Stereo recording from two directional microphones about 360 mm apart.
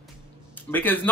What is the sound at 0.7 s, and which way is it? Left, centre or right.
Speech, centre.